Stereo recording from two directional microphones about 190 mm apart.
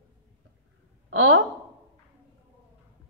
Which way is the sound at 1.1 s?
90° right.